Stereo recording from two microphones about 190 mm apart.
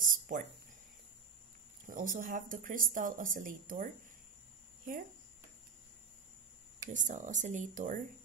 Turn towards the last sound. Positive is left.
turn(degrees=-45)  # may be behind; listen again after turning